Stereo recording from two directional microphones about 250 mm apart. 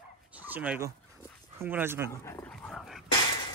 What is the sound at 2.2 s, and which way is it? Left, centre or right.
Dog, centre.